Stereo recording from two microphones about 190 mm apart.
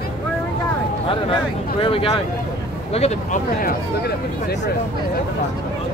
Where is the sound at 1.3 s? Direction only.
30° left (ahead or behind).